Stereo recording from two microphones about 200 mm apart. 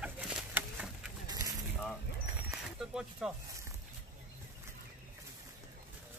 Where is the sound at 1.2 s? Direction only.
20° right (ahead or behind).